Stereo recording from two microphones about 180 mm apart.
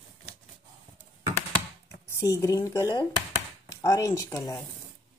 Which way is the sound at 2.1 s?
15° left (ahead or behind).